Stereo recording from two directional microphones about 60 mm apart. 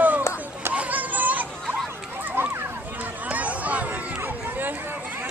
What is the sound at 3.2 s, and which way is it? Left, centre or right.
Run, right.